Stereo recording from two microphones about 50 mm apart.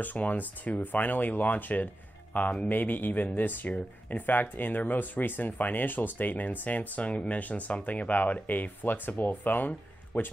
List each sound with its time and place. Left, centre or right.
0.0 s speech: left